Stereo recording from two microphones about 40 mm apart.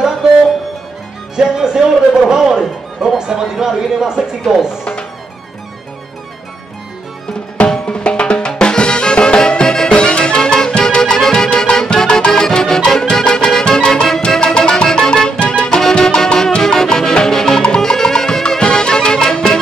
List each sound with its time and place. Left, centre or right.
1.3 s speech: centre
7.8 s music: left